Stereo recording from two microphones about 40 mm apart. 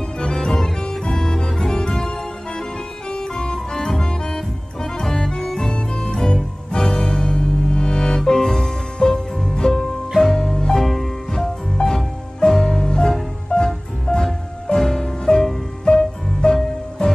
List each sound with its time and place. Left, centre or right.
0.2 s music: centre